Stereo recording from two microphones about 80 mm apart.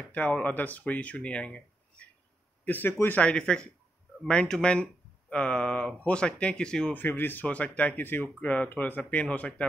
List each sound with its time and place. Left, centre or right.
0.1 s speech: left
3.2 s speech: centre
7.0 s speech: left